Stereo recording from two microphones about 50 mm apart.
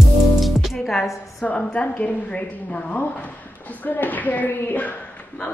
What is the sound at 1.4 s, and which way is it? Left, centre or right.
Speech, left.